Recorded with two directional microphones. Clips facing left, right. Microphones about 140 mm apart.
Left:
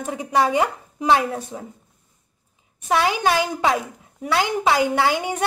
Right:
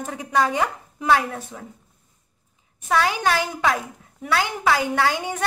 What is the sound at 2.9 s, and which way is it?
A woman's voice, 15° left (ahead or behind).